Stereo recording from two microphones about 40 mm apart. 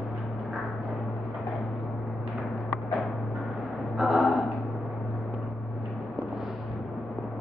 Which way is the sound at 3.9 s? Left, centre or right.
Centre.